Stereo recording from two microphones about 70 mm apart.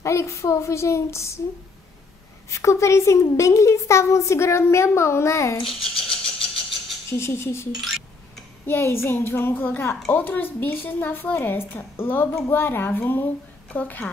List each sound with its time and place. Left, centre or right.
0.0 s a woman's voice: left
2.5 s a woman's voice: left
5.6 s a sound: centre
7.1 s a woman's voice: left
7.8 s a sound: centre
8.6 s a woman's voice: left